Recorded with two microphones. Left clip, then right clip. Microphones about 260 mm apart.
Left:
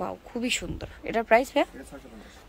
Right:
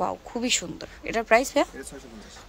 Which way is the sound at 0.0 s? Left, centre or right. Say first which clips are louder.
Right 4 dB; centre.